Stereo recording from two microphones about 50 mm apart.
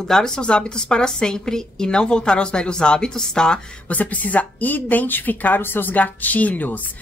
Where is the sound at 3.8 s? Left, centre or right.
Left.